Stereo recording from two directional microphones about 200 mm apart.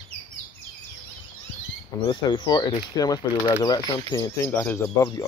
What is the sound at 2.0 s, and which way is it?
Speech, 20° left (ahead or behind).